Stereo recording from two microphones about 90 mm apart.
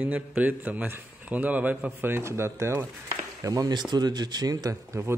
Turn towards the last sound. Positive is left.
turn(degrees=-45)  # may be behind; listen again after turning